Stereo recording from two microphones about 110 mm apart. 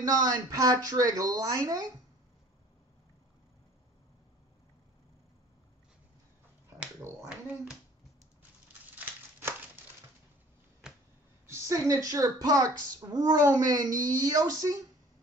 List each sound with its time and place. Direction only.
0.0 s speech: 35° right (ahead or behind)
8.9 s crumpling: 20° right (ahead or behind)
10.8 s a sound: 5° right (ahead or behind)
11.4 s speech: 30° right (ahead or behind)